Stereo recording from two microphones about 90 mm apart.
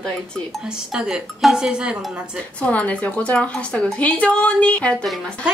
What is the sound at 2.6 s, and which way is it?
Speech, 15° left (ahead or behind).